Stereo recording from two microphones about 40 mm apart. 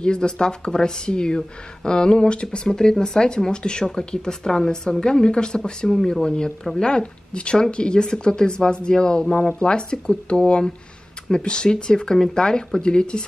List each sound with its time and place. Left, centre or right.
0.0 s speech: left
5.9 s speech: centre